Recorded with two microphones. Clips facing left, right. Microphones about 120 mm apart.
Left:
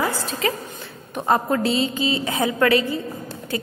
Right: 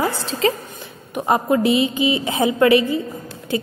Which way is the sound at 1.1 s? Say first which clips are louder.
Right 2 dB; 15° right (ahead or behind).